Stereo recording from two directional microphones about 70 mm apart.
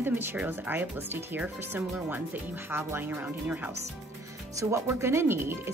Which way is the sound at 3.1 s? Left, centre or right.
Right.